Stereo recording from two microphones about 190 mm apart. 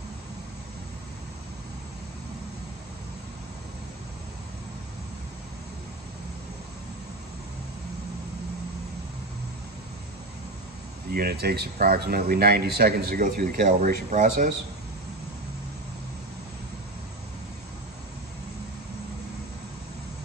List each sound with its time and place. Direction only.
11.1 s speech: 55° right (ahead or behind)